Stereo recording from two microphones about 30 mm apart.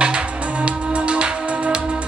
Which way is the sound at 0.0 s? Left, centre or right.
Right.